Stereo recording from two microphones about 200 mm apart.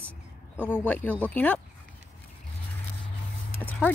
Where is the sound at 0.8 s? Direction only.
10° left (ahead or behind).